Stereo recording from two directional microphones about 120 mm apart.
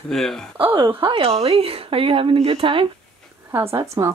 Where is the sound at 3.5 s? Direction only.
25° right (ahead or behind).